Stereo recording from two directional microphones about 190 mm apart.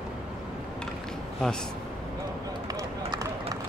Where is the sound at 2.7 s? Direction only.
20° right (ahead or behind).